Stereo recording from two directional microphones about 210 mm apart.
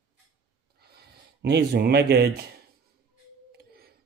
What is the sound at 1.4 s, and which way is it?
Speech, 55° right (ahead or behind).